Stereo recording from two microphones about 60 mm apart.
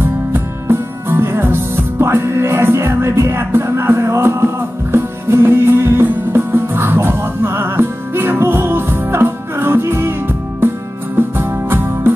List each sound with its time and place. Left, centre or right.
0.0 s music: right